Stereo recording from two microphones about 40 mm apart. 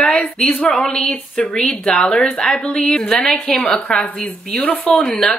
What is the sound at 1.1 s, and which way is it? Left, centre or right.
Speech, left.